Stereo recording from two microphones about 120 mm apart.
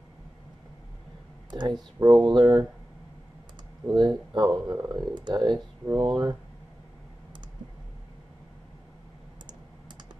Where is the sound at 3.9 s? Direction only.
35° right (ahead or behind).